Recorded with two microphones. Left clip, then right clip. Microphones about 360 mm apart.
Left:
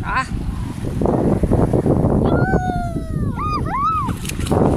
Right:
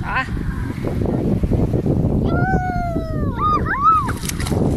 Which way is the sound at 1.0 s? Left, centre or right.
Left.